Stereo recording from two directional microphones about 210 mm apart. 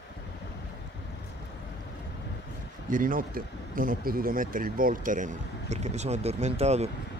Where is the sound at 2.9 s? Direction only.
40° right (ahead or behind).